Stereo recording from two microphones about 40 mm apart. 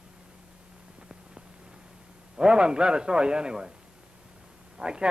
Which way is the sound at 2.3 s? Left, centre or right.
Right.